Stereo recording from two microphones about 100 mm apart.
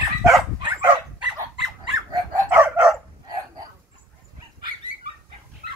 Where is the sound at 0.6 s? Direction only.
50° right (ahead or behind).